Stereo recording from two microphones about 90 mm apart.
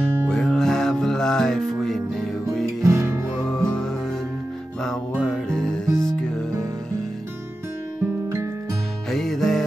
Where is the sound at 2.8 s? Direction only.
30° right (ahead or behind).